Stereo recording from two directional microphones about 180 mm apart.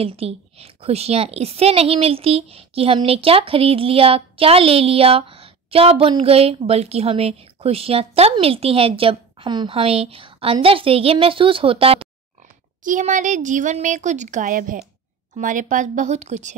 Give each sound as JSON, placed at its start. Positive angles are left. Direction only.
{"t": 0.0, "sound": "a woman's voice", "side_deg": -35}
{"t": 12.8, "sound": "a woman's voice", "side_deg": -45}